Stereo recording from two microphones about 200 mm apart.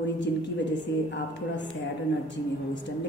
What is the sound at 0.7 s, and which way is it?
A woman's voice, 65° left (ahead or behind).